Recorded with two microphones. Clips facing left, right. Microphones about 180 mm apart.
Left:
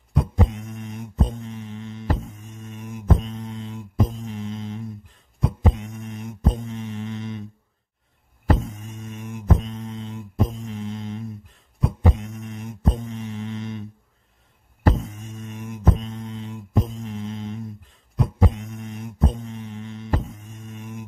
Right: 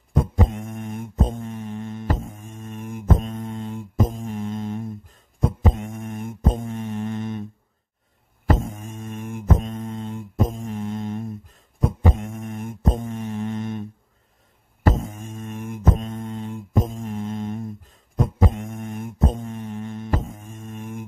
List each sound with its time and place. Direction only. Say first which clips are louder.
0.1 s mantra: right 1 dB; 45° right (ahead or behind)
8.6 s mantra: right 3 dB; 50° right (ahead or behind)
15.0 s mantra: right 3 dB; 50° right (ahead or behind)